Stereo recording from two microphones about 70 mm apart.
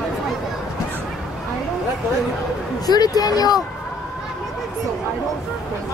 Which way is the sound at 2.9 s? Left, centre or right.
Left.